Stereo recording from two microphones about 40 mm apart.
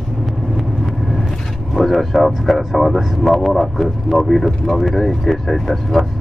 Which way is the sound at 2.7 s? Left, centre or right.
Centre.